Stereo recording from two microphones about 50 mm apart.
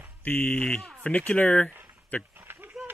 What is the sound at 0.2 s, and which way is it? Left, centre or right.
Speech, left.